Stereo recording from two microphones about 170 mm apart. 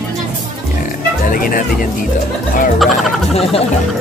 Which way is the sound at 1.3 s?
55° left (ahead or behind).